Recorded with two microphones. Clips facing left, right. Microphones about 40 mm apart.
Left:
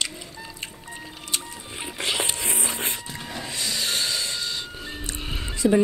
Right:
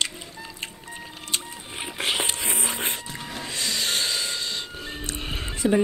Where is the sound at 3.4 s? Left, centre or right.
Right.